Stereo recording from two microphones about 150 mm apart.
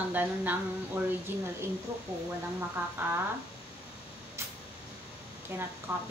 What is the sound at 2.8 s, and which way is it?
Speech, 15° right (ahead or behind).